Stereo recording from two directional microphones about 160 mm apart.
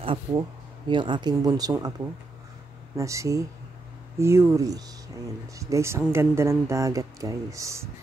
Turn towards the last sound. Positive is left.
turn(degrees=-20)  # may be behind; listen again after turning